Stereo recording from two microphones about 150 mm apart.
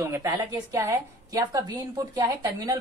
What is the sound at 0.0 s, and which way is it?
A woman's voice, 20° right (ahead or behind).